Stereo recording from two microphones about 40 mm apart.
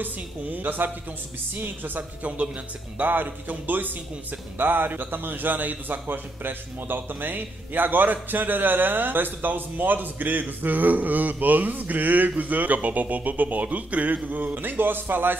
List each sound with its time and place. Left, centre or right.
0.0 s a man's voice: right
2.2 s speech: right
3.0 s a man's voice: right